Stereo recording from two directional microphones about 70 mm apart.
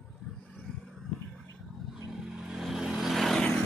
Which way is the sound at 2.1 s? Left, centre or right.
Centre.